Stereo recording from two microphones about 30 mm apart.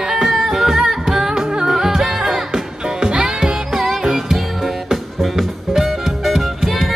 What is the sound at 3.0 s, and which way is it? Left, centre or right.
Music, right.